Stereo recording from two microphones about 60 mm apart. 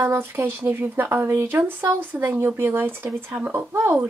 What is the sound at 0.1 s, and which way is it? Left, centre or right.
Speech, right.